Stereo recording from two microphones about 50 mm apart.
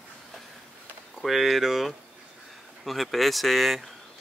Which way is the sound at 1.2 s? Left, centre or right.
Centre.